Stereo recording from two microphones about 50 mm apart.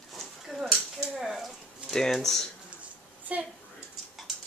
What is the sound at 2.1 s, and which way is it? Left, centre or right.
Speech, centre.